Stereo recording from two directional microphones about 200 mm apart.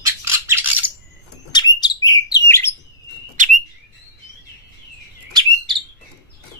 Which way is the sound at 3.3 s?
40° right (ahead or behind).